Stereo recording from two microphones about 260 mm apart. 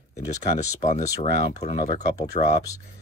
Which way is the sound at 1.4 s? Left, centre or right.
Left.